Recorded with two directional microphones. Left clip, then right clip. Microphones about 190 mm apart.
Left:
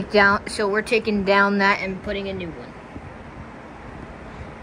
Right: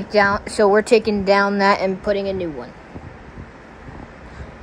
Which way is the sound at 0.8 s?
15° right (ahead or behind).